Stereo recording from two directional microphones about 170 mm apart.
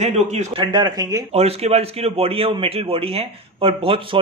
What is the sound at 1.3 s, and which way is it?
Speech, 40° right (ahead or behind).